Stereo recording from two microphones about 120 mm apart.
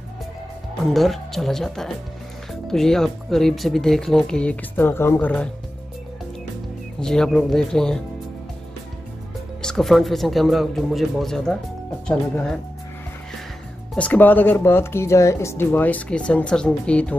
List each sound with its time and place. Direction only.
0.8 s speech: centre (ahead or behind); by 5.3 s 20° left (ahead or behind)
7.0 s speech: 5° left (ahead or behind)
9.6 s speech: 5° left (ahead or behind)
13.9 s speech: 10° left (ahead or behind)